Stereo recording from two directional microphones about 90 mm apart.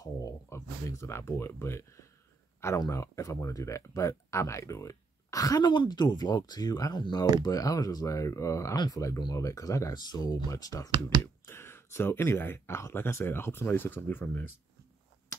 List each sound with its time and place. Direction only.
0.0 s speech: 35° left (ahead or behind)
5.6 s speech: 55° left (ahead or behind); by 8.7 s 35° left (ahead or behind)
8.7 s speech: 45° left (ahead or behind)
9.9 s speech: 50° left (ahead or behind)
10.9 s speech: 65° right (ahead or behind)
11.4 s speech: 25° left (ahead or behind)